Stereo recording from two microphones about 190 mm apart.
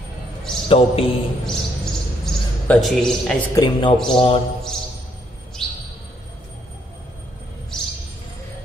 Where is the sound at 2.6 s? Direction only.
Centre (ahead or behind).